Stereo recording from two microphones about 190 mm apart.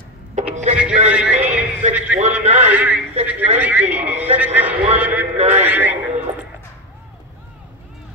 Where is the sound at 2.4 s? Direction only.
35° right (ahead or behind).